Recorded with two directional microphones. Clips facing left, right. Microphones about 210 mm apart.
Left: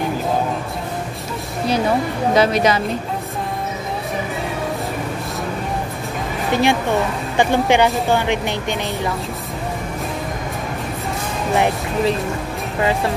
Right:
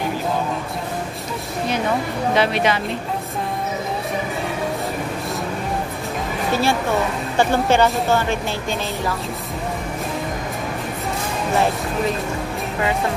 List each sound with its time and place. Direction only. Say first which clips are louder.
2.3 s a woman's voice: left 3 dB; 40° left (ahead or behind)
6.5 s speech: left 3 dB; 20° left (ahead or behind)